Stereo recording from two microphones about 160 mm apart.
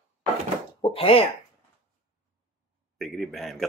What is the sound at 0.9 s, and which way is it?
Speech, 35° left (ahead or behind).